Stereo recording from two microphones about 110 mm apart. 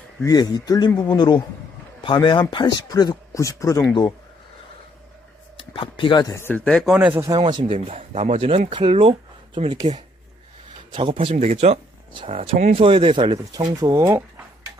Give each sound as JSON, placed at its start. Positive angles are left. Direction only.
{"t": 0.2, "sound": "speech", "side_deg": 35}
{"t": 5.7, "sound": "speech", "side_deg": 50}
{"t": 6.2, "sound": "speech", "side_deg": 25}
{"t": 6.5, "sound": "speech", "side_deg": 10}
{"t": 6.8, "sound": "speech", "side_deg": -5}
{"t": 7.2, "sound": "speech", "side_deg": -40}
{"t": 7.6, "sound": "speech", "side_deg": -70}
{"t": 9.9, "sound": "speech", "side_deg": -90}
{"t": 10.9, "sound": "a man's voice", "side_deg": -55}
{"t": 11.4, "sound": "speech", "side_deg": -75}
{"t": 12.3, "sound": "speech", "side_deg": -65}
{"t": 13.5, "sound": "speech", "side_deg": -35}